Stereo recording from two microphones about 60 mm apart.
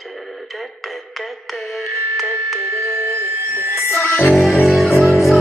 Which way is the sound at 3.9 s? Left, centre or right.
Left.